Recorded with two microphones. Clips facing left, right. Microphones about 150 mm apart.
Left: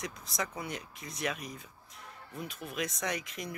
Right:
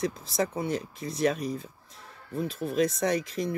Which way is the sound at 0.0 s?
30° right (ahead or behind).